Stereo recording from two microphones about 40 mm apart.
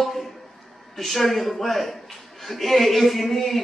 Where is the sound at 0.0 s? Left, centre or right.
Centre.